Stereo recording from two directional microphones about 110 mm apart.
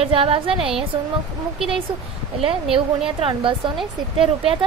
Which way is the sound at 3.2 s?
55° right (ahead or behind).